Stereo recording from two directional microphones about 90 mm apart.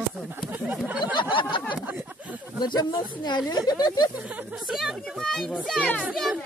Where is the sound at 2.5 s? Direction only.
50° left (ahead or behind).